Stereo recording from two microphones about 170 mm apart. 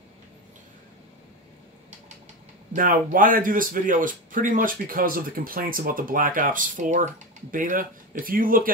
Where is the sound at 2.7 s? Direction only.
55° right (ahead or behind).